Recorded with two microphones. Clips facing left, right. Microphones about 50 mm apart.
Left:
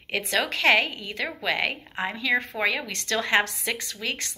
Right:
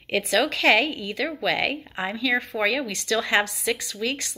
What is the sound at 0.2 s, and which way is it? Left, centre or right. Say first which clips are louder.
A woman's voice: right 2 dB; left.